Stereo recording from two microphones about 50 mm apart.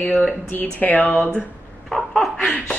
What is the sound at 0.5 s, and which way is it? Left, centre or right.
Speech, left.